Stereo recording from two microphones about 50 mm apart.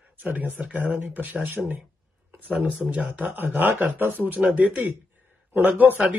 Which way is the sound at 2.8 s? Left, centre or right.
Right.